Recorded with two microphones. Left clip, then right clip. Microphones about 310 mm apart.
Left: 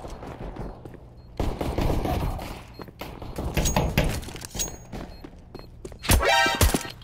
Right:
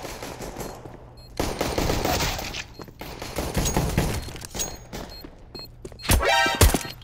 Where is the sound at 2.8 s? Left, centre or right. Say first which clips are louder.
Even; centre.